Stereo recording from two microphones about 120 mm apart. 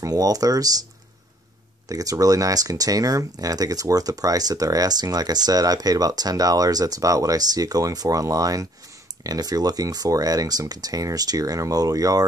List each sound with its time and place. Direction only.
0.0 s speech: 30° right (ahead or behind)
1.9 s speech: 30° right (ahead or behind)